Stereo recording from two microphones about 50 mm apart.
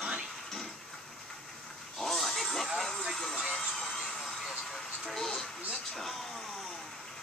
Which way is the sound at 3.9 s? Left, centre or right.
Centre.